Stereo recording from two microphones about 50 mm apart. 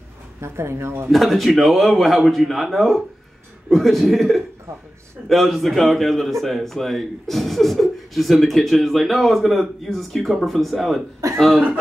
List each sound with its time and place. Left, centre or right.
0.4 s speech: right
1.1 s a man's voice: centre